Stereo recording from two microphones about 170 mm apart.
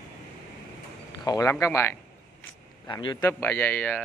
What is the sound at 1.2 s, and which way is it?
Speech, 20° left (ahead or behind).